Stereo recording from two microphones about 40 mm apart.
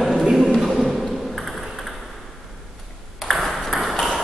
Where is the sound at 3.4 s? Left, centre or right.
Centre.